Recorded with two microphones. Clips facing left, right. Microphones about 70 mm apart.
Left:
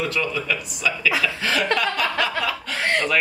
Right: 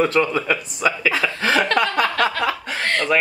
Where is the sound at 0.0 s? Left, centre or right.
Right.